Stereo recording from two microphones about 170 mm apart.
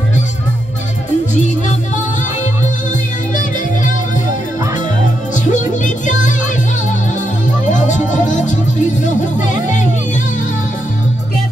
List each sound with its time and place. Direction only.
5.3 s music: 45° left (ahead or behind)
7.7 s music: 45° left (ahead or behind)